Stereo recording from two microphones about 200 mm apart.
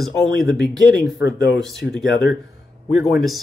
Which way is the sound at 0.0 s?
Centre (ahead or behind).